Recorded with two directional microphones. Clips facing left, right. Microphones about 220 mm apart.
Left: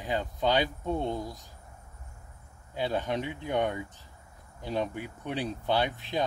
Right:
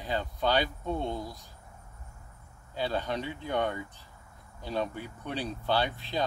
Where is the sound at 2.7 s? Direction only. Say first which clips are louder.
Left 2 dB; 15° left (ahead or behind).